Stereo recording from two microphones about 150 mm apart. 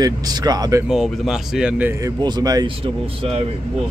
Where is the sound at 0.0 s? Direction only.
25° right (ahead or behind).